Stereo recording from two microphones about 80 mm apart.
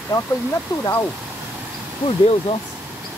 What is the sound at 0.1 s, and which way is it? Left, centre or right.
Speech, left.